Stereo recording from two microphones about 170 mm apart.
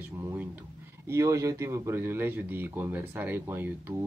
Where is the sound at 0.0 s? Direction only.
15° right (ahead or behind).